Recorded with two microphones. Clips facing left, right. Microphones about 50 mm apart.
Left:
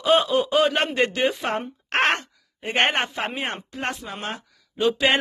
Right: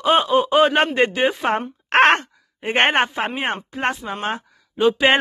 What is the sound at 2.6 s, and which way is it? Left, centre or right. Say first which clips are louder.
Speech: right 4 dB; right.